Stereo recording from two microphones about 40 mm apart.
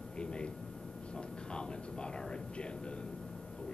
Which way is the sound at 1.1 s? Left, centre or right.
Left.